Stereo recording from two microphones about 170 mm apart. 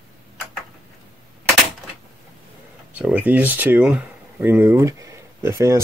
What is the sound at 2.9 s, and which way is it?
Speech, 10° right (ahead or behind).